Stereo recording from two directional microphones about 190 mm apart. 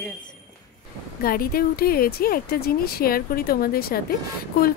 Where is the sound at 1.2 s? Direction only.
50° left (ahead or behind).